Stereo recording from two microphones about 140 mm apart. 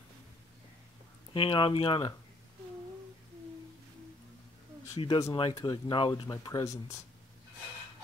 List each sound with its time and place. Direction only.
1.3 s speech: 40° left (ahead or behind)
4.9 s speech: 35° left (ahead or behind)